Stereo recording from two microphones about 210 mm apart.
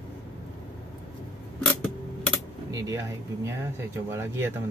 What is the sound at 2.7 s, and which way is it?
Speech, 15° right (ahead or behind).